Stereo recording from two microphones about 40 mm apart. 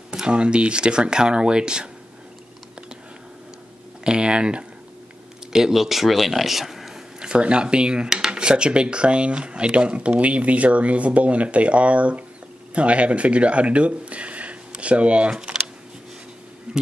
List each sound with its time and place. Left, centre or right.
0.3 s speech: right
4.0 s speech: right
5.5 s speech: centre
7.2 s speech: right
16.7 s a sound: right